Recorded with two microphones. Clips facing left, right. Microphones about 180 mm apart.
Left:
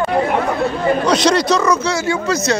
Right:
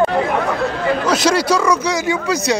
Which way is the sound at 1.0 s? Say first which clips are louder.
Left 1 dB; 5° right (ahead or behind).